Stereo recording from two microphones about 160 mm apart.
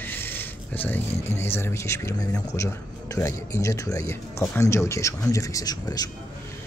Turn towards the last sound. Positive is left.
turn(degrees=25)  # may be behind; listen again after turning